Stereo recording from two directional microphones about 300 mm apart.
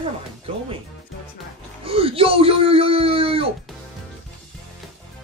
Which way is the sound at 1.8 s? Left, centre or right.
Centre.